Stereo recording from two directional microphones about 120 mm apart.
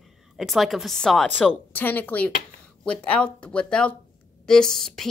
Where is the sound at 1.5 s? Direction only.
15° left (ahead or behind).